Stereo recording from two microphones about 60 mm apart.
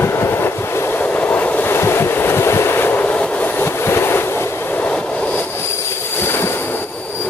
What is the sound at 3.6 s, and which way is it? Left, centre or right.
Train, left.